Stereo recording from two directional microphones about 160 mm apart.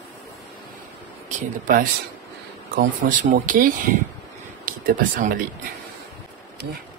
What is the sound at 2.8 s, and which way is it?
Speech, 55° right (ahead or behind).